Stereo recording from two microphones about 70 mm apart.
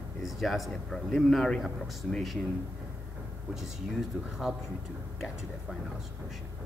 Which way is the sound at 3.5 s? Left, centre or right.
Centre.